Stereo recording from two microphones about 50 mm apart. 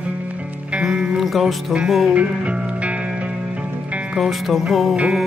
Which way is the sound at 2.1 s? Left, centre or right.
Right.